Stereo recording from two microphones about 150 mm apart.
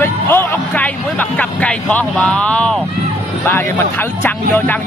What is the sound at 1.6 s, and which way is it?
Speech, 10° left (ahead or behind).